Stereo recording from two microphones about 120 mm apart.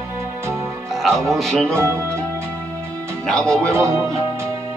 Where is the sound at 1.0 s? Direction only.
Centre (ahead or behind).